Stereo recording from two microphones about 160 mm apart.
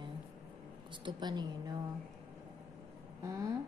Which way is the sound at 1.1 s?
25° right (ahead or behind).